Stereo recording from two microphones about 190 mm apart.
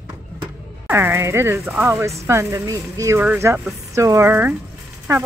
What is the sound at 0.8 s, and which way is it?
Speech, 10° right (ahead or behind).